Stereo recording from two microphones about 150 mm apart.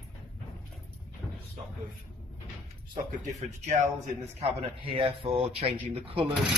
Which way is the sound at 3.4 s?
50° right (ahead or behind).